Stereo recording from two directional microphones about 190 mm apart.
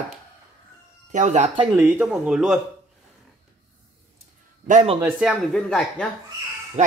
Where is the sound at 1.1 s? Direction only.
40° right (ahead or behind).